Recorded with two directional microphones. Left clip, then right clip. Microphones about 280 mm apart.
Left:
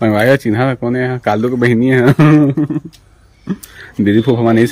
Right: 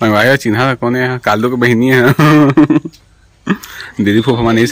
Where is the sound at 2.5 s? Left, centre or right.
Right.